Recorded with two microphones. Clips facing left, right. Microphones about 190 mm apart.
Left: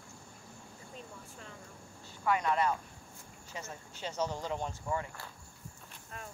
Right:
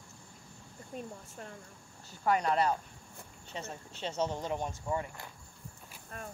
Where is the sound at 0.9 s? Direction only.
50° right (ahead or behind).